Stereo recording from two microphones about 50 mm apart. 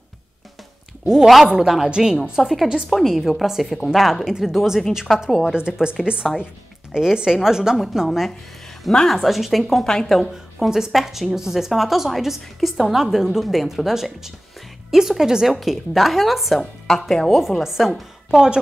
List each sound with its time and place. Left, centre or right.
1.0 s speech: centre
1.9 s a woman's voice: centre
2.9 s a woman's voice: centre